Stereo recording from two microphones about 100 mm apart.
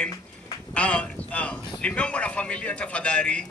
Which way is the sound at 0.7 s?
10° left (ahead or behind).